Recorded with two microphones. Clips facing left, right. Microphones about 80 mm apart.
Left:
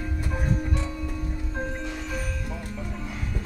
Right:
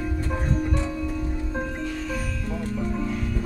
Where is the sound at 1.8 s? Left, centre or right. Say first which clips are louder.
Right 3 dB; centre.